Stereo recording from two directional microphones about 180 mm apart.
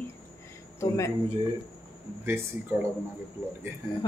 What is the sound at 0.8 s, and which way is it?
Speech, 15° left (ahead or behind).